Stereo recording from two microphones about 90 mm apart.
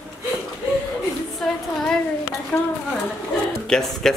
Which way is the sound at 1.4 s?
5° left (ahead or behind).